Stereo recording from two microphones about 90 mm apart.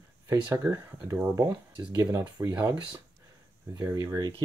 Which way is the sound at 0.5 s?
25° right (ahead or behind).